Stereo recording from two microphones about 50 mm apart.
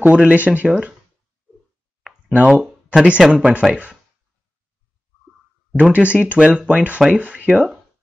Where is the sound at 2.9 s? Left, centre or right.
Right.